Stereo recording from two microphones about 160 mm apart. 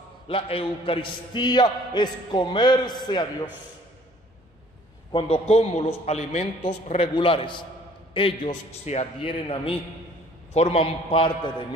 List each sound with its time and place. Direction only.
0.3 s a man's voice: 35° left (ahead or behind)
5.1 s a man's voice: 40° left (ahead or behind)
7.2 s a man's voice: 35° left (ahead or behind)